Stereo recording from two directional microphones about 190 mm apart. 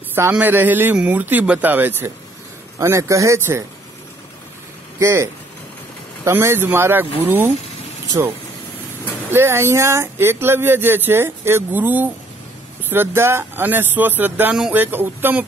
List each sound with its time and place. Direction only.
0.1 s speech: 10° right (ahead or behind)
4.9 s speech: 15° right (ahead or behind)
9.3 s speech: 10° right (ahead or behind)